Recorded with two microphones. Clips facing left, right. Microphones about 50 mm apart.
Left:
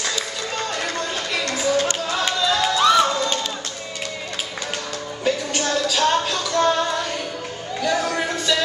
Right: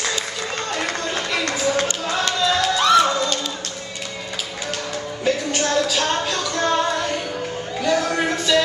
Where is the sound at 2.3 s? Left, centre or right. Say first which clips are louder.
Even; centre.